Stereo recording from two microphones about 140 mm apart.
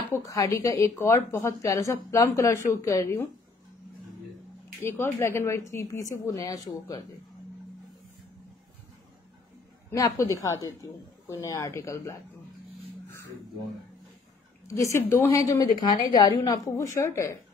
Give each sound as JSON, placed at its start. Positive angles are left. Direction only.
{"t": 0.1, "sound": "a woman's voice", "side_deg": 25}
{"t": 4.8, "sound": "a woman's voice", "side_deg": 20}
{"t": 9.8, "sound": "a woman's voice", "side_deg": 25}
{"t": 14.7, "sound": "a woman's voice", "side_deg": 20}